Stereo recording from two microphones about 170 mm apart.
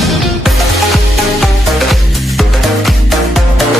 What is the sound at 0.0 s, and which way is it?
Music, centre (ahead or behind).